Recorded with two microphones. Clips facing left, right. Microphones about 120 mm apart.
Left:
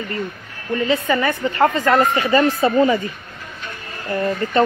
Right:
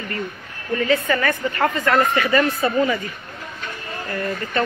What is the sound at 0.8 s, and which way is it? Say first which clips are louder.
Speech: left 1 dB; 25° left (ahead or behind).